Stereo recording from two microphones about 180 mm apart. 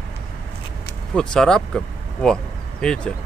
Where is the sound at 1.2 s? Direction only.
5° left (ahead or behind).